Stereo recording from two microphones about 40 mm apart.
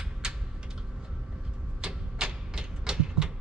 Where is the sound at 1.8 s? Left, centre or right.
Centre.